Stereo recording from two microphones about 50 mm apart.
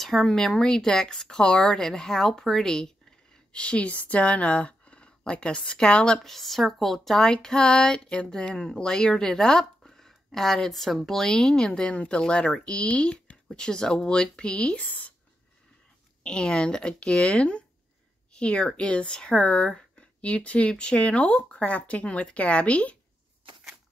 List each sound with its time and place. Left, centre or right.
0.0 s speech: centre
3.5 s speech: left
6.1 s speech: centre
7.4 s speech: centre
14.8 s speech: left
16.2 s speech: centre